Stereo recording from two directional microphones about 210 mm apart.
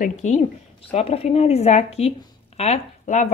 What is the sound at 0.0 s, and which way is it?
Speech, 35° left (ahead or behind).